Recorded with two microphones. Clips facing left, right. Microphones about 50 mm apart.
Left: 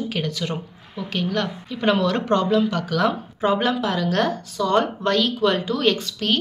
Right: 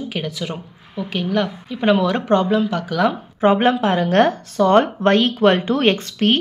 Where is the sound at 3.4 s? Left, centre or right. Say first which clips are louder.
Right 5 dB; right.